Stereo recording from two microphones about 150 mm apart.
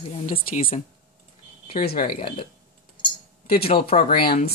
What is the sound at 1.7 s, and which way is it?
Speech, 80° left.